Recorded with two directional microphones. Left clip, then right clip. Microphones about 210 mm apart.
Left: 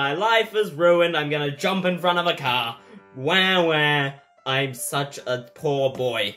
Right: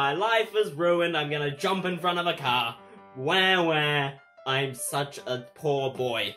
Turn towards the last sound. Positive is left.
turn(degrees=5)  # may be behind; listen again after turning